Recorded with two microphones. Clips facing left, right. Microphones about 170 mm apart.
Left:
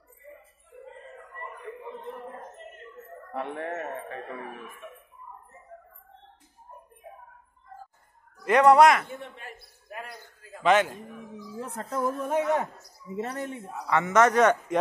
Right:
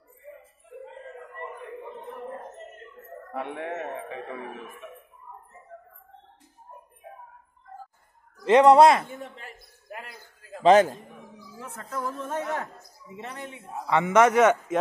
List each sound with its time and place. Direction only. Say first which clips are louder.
3.3 s a man's voice: even; centre (ahead or behind)
8.5 s speech: right 2 dB; 25° right (ahead or behind)
10.6 s a man's voice: right 5 dB; 35° right (ahead or behind)
11.6 s speech: left 3 dB; 25° left (ahead or behind)
12.3 s speech: left 7 dB; 15° left (ahead or behind)
13.1 s a man's voice: left 6 dB; 40° left (ahead or behind)
13.8 s a man's voice: right 2 dB; 15° right (ahead or behind)